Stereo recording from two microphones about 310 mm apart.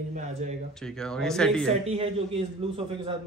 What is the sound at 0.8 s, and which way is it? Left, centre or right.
Speech, centre.